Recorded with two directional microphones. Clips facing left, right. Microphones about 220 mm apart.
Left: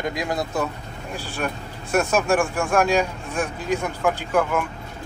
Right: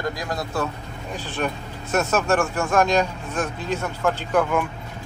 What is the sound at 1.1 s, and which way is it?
A man's voice, 10° left (ahead or behind).